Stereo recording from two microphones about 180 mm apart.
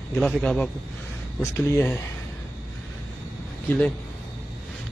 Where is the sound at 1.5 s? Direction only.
15° left (ahead or behind).